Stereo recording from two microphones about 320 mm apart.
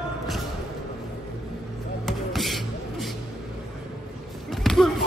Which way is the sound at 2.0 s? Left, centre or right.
Centre.